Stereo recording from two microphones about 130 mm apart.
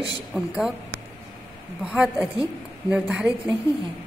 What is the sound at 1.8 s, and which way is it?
A woman's voice, 10° right (ahead or behind).